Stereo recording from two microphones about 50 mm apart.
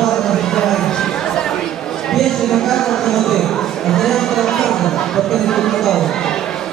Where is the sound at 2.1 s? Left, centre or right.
Centre.